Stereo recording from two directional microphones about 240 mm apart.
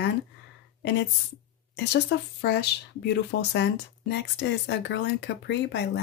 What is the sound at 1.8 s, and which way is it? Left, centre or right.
Speech, left.